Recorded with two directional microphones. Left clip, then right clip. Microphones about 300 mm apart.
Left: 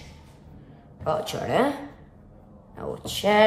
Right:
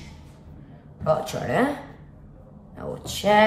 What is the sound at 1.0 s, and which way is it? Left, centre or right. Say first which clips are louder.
A man's voice: right 2 dB; centre.